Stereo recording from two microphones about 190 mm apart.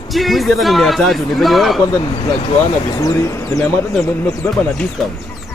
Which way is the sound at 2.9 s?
15° left (ahead or behind).